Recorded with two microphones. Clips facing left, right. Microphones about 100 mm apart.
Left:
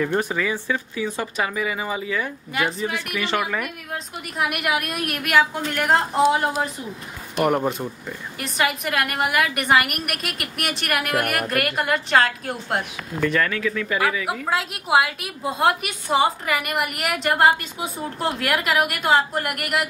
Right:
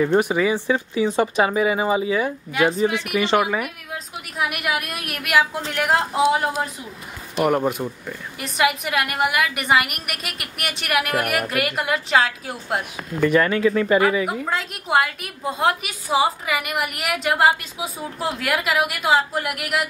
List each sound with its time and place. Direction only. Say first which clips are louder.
0.0 s speech: right 5 dB; 15° right (ahead or behind)
2.5 s a woman's voice: right 5 dB; centre (ahead or behind)
13.3 s speech: right 7 dB; 25° right (ahead or behind)
14.5 s a woman's voice: left 3 dB; 5° left (ahead or behind)